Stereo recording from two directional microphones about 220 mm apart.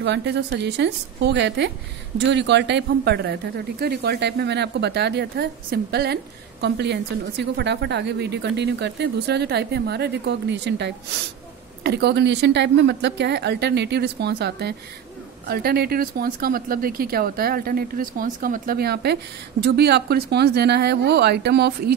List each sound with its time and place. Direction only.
0.0 s a woman's voice: 50° right (ahead or behind)